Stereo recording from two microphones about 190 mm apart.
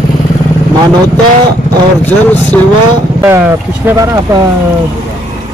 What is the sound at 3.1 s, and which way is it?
Speech, 15° right (ahead or behind).